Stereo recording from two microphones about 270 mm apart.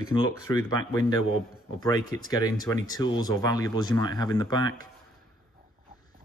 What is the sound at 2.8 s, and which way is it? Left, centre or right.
Speech, centre.